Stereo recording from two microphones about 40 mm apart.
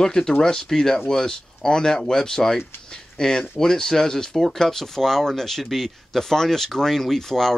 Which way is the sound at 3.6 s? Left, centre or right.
Centre.